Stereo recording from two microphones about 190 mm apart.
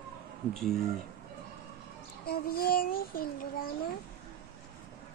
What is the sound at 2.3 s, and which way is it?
Speech, 55° left (ahead or behind).